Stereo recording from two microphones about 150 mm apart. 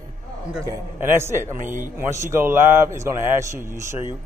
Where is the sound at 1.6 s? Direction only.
60° right (ahead or behind).